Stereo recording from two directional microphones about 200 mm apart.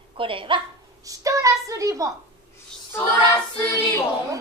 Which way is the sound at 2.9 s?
15° left (ahead or behind).